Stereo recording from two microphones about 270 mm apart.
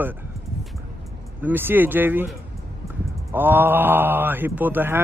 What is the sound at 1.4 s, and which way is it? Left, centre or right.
Speech, centre.